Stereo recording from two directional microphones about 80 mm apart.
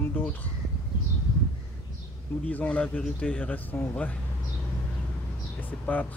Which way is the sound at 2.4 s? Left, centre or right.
Centre.